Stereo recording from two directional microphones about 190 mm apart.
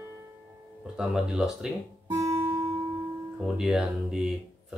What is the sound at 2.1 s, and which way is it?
Guitar, 20° right (ahead or behind).